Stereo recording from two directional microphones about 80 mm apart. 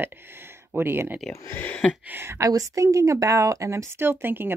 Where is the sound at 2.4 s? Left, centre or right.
Right.